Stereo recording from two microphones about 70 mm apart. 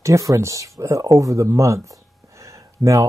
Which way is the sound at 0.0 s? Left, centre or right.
Right.